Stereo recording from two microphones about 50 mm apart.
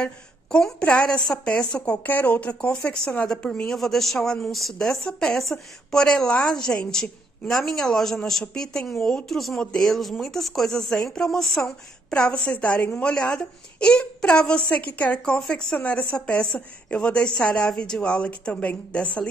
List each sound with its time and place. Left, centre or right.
0.0 s a woman's voice: centre
2.0 s a woman's voice: left
3.6 s speech: centre
4.7 s speech: centre
9.8 s speech: centre
12.1 s a woman's voice: left
14.8 s speech: left
15.4 s speech: centre
15.8 s a woman's voice: left